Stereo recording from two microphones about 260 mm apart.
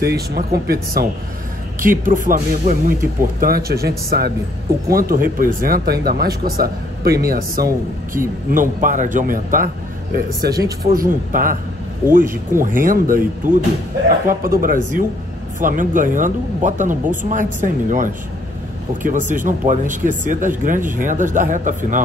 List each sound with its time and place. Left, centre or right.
0.0 s speech: right
10.4 s speech: centre
10.9 s speech: right